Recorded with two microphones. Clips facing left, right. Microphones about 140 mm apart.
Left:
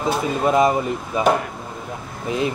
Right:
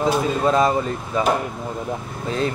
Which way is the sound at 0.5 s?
15° left (ahead or behind).